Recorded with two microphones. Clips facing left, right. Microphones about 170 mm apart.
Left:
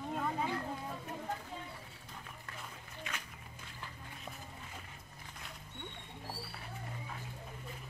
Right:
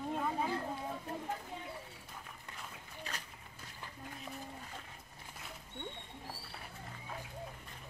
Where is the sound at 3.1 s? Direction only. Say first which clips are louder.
Left 1 dB; 35° right (ahead or behind).